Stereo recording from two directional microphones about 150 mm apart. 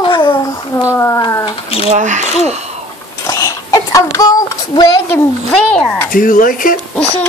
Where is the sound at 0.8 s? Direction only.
20° left (ahead or behind).